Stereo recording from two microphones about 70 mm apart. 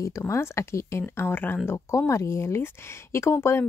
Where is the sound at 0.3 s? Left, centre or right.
Left.